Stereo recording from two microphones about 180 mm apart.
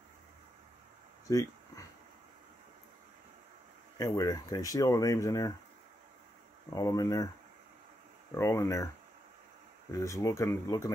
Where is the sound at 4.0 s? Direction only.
20° left (ahead or behind).